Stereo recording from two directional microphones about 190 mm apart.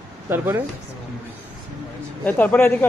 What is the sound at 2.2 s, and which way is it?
Speech, 10° left (ahead or behind).